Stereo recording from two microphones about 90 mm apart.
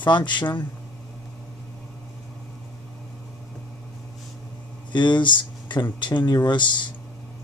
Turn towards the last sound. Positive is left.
turn(degrees=60)  # may be behind; listen again after turning